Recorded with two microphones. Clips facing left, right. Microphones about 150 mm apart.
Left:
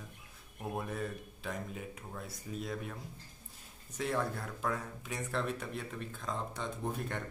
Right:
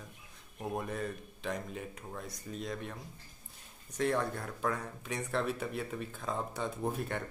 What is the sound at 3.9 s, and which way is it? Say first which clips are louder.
Speech: right 3 dB; 5° left (ahead or behind).